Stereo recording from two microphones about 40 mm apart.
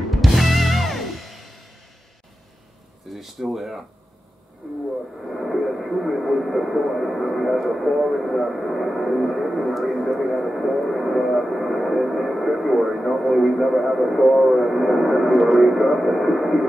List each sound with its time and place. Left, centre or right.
0.1 s music: centre
3.1 s speech: centre
4.6 s speech: centre
5.6 s speech: centre